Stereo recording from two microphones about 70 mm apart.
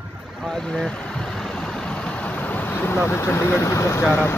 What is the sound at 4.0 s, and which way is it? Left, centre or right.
Speech, left.